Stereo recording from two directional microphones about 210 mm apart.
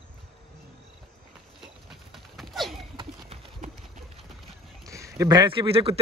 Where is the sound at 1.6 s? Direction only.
Centre (ahead or behind).